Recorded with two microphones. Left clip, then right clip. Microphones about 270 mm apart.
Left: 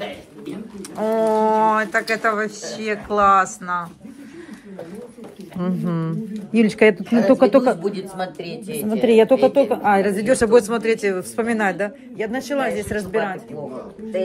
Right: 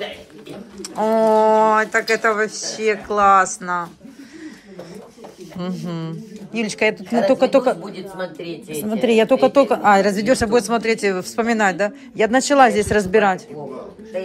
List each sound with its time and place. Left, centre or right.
0.9 s speech: centre
5.6 s speech: centre
8.8 s speech: centre